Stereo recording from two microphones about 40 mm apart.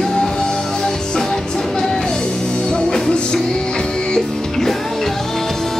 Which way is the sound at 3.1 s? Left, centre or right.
Left.